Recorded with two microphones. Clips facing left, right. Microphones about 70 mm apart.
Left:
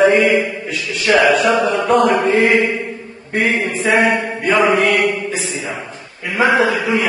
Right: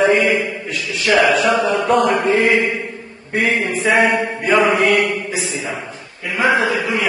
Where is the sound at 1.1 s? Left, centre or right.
Centre.